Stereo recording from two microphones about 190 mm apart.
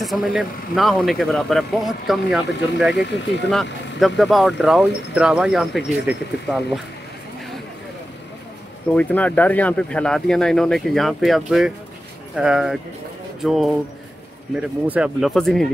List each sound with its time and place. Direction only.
0.0 s speech: centre (ahead or behind)
2.9 s speech: 65° left (ahead or behind)
4.0 s speech: centre (ahead or behind)
8.9 s speech: 10° left (ahead or behind)